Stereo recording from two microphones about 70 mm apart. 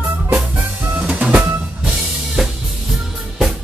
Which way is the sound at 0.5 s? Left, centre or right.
Right.